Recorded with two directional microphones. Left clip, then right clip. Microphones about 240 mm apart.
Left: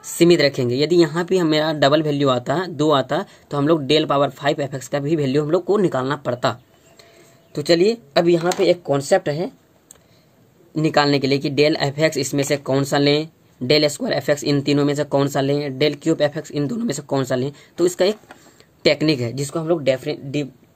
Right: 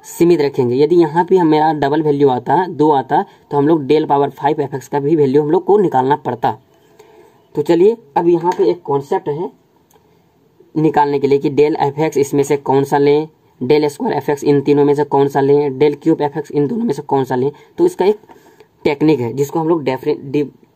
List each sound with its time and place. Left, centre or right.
0.0 s speech: centre
7.6 s speech: centre
10.8 s speech: centre